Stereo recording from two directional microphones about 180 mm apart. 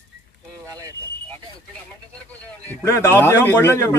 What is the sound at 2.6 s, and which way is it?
Speech, 15° left (ahead or behind).